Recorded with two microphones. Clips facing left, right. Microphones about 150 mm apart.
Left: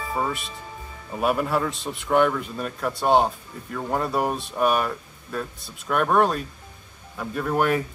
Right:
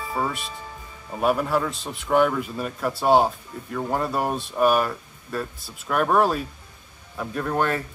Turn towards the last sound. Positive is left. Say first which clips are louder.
# left 1 dB
turn(degrees=0)  # may be behind; listen again after turning